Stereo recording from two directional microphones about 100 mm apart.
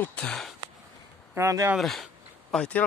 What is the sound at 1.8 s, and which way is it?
Speech, centre (ahead or behind).